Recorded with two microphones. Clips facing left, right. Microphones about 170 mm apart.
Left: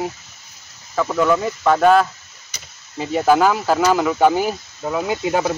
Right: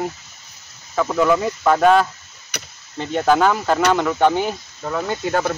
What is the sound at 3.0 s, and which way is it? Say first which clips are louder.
Speech: left 1 dB; 5° left (ahead or behind).